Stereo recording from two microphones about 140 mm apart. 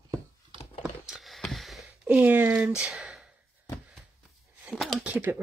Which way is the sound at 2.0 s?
10° right (ahead or behind).